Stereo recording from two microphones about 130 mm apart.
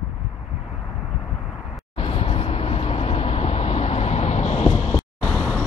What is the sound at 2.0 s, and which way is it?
Vehicle, 50° left (ahead or behind).